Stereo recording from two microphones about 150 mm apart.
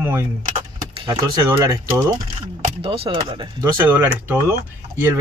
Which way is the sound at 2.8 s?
35° right (ahead or behind).